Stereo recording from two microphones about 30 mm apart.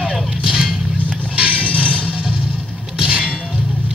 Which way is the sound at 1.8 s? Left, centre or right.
Right.